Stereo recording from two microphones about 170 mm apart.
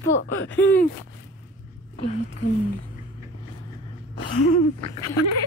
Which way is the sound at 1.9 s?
40° left (ahead or behind).